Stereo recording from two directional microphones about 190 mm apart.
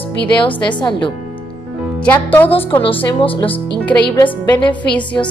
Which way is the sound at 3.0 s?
30° left (ahead or behind).